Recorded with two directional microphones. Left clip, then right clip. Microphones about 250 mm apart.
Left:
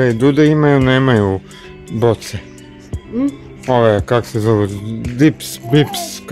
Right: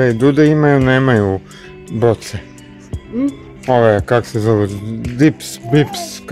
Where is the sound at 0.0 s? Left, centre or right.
Centre.